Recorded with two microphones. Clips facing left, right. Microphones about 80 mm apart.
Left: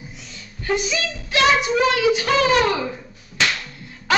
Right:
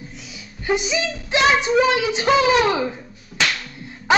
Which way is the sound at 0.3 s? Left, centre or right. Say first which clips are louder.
Right 1 dB; centre.